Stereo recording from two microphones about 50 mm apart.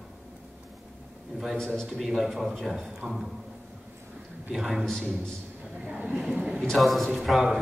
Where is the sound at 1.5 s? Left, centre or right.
Centre.